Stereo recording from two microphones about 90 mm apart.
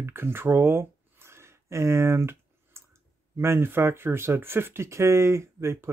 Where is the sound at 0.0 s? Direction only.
25° right (ahead or behind).